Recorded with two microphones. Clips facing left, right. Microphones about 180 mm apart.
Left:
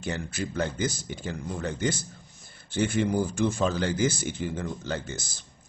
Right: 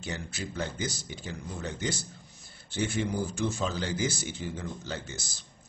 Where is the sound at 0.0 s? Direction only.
55° left (ahead or behind).